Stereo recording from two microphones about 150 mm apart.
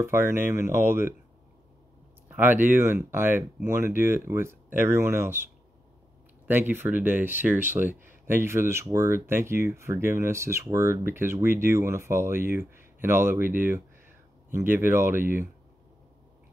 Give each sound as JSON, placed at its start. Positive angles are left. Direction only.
{"t": 0.0, "sound": "speech", "side_deg": -15}
{"t": 2.2, "sound": "speech", "side_deg": -10}
{"t": 6.4, "sound": "speech", "side_deg": -15}